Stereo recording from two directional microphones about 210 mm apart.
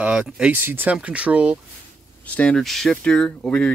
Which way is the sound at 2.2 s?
5° left (ahead or behind).